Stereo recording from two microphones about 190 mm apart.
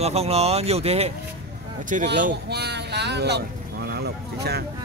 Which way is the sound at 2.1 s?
55° right (ahead or behind).